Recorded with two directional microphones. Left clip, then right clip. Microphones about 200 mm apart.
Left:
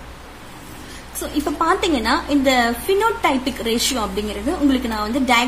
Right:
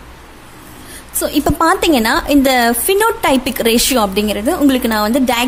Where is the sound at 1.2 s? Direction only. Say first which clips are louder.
Right 6 dB; 50° right (ahead or behind).